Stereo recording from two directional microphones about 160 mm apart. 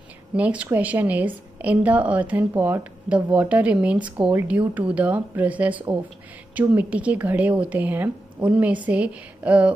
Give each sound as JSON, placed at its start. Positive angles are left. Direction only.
{"t": 0.4, "sound": "a woman's voice", "side_deg": -10}